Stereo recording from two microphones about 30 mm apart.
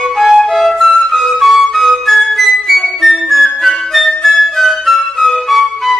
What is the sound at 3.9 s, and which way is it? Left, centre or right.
Music, centre.